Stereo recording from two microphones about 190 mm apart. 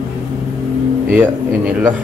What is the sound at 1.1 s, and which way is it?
Speech, 5° right (ahead or behind).